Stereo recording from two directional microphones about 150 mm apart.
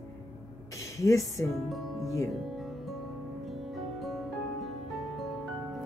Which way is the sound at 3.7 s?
Centre (ahead or behind).